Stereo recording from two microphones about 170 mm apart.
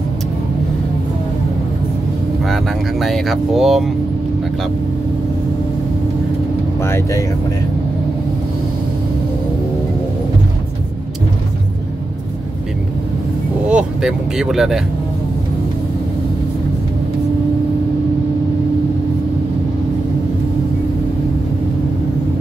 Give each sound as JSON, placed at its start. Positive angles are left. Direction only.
{"t": 2.5, "sound": "speech", "side_deg": 0}
{"t": 6.8, "sound": "speech", "side_deg": 15}
{"t": 13.7, "sound": "speech", "side_deg": -5}